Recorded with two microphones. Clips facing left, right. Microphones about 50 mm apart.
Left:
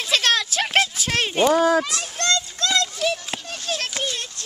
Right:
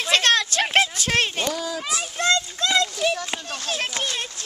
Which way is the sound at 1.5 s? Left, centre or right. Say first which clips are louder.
Left 11 dB; left.